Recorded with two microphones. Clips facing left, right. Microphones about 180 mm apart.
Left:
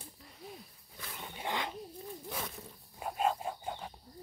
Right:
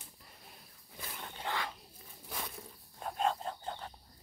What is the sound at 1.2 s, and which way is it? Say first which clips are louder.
Dog: left 2 dB; 15° left (ahead or behind).